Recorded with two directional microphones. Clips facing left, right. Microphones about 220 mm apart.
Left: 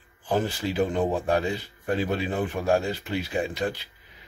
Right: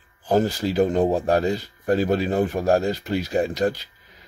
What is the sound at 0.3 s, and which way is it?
Speech, 40° right (ahead or behind).